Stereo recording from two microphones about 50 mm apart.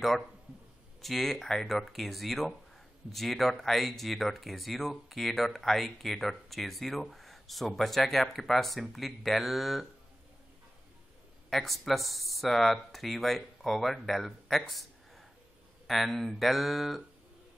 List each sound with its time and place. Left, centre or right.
1.0 s speech: centre
11.5 s speech: centre